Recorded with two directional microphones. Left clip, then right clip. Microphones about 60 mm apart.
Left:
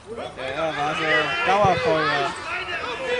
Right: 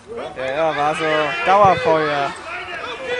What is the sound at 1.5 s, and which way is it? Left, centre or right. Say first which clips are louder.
Run: right 7 dB; right.